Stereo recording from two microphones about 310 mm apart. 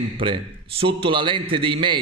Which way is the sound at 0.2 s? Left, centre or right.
Centre.